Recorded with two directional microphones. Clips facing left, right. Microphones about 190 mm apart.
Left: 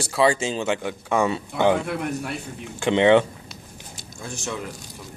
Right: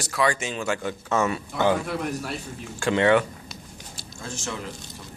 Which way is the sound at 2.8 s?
20° left (ahead or behind).